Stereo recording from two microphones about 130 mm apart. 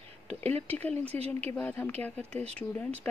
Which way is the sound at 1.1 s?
50° right (ahead or behind).